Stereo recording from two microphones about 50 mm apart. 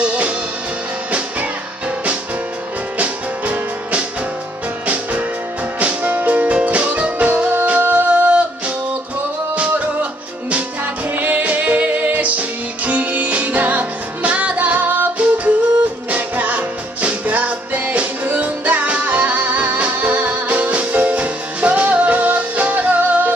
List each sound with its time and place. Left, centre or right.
0.0 s music: right
3.0 s music: right
11.1 s music: right